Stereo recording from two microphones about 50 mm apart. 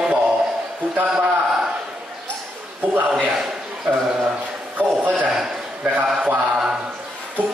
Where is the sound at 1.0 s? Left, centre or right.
Centre.